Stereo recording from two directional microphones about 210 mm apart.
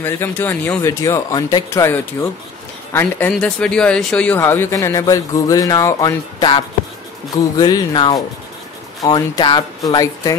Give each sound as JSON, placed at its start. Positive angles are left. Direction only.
{"t": 0.0, "sound": "speech", "side_deg": 10}